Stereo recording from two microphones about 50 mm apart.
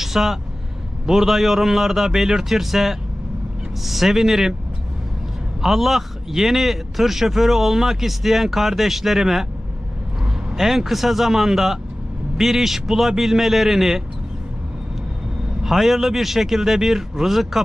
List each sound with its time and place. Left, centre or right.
0.0 s a man's voice: centre
5.6 s a man's voice: centre
15.6 s a man's voice: centre